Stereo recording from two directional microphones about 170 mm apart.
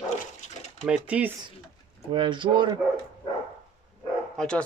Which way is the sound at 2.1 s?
30° right (ahead or behind).